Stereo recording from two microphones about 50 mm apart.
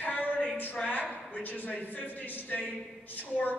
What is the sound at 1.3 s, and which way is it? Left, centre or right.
A man's voice, left.